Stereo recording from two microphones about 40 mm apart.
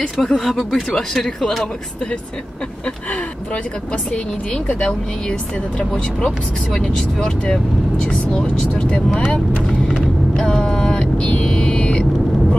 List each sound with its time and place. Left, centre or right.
0.0 s speech: centre
4.5 s speech: left
10.3 s vehicle: centre
11.4 s a sound: centre